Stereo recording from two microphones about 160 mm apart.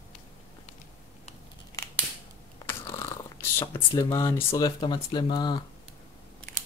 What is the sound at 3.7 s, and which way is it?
Speech, 30° left (ahead or behind).